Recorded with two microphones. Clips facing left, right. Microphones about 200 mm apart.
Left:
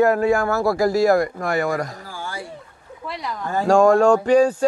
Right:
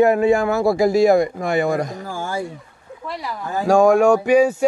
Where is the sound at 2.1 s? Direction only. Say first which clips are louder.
Right 7 dB; 45° right (ahead or behind).